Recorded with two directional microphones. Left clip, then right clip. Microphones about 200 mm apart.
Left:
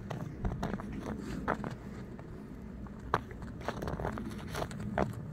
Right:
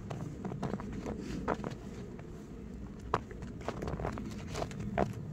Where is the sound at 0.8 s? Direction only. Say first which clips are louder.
Even; centre (ahead or behind).